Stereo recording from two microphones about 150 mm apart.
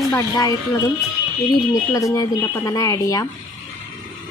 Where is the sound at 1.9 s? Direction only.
20° left (ahead or behind).